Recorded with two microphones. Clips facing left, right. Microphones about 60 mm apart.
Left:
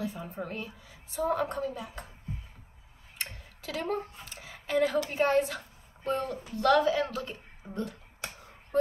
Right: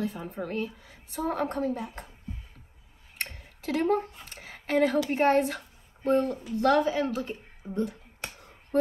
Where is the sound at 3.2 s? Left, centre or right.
Right.